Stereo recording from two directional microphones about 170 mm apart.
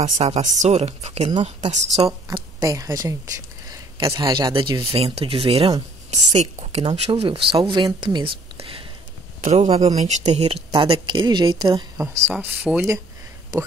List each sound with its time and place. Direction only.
0.0 s speech: 40° right (ahead or behind); by 12.2 s 20° right (ahead or behind)
12.3 s speech: 10° right (ahead or behind)